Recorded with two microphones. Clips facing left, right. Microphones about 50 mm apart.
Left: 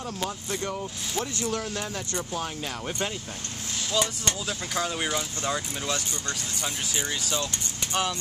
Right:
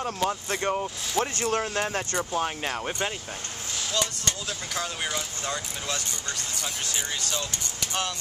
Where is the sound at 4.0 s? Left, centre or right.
Centre.